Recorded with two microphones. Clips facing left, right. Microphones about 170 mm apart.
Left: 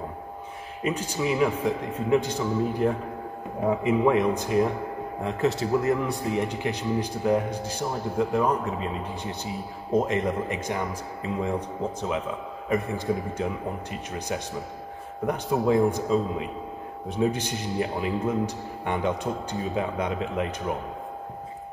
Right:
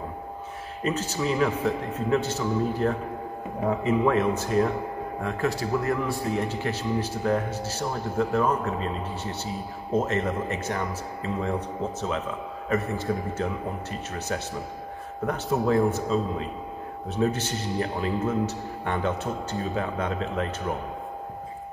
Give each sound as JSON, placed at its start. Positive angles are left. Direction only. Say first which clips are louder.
{"t": 0.8, "sound": "speech", "louder": "even", "side_deg": 15}
{"t": 15.2, "sound": "speech", "louder": "left 1 dB", "side_deg": 15}